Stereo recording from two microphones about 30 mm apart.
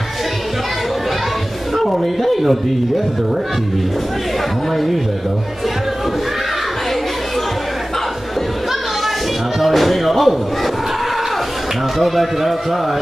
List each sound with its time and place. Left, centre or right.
1.8 s speech: centre
9.6 s music: centre
12.0 s speech: centre